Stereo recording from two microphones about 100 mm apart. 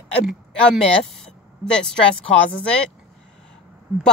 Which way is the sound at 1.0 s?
5° left (ahead or behind).